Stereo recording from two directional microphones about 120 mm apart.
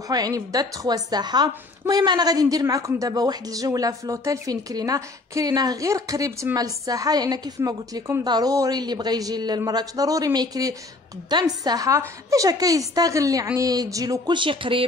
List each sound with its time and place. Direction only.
0.1 s a woman's voice: 30° right (ahead or behind)